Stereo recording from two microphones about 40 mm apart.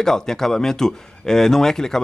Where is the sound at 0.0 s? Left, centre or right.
Centre.